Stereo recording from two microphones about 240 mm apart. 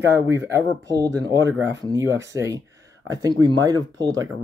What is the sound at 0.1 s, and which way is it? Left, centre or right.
Speech, centre.